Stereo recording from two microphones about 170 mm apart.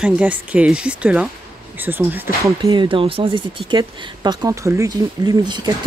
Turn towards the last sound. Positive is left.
turn(degrees=-25)  # may be behind; listen again after turning